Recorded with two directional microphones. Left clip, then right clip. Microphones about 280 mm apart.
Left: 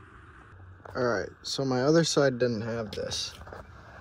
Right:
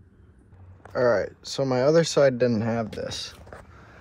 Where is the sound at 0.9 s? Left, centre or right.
Centre.